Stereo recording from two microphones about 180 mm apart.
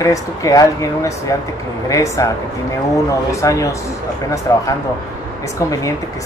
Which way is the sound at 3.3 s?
20° left (ahead or behind).